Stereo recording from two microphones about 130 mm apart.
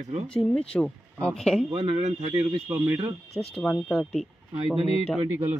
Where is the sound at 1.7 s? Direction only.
40° right (ahead or behind).